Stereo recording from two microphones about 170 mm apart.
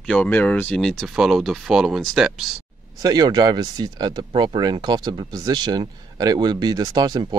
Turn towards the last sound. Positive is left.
turn(degrees=-25)  # may be behind; listen again after turning